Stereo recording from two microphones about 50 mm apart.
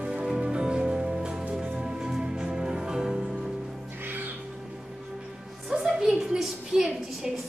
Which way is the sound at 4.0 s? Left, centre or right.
Right.